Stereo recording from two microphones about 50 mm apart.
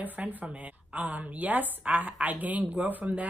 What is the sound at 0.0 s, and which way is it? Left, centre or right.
A woman's voice, right.